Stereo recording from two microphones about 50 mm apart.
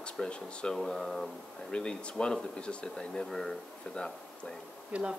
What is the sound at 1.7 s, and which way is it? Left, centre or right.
Speech, centre.